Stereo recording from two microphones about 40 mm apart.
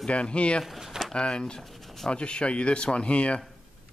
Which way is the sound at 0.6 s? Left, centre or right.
Centre.